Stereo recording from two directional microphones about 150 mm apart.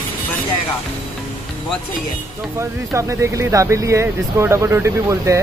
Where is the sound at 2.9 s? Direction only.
20° right (ahead or behind).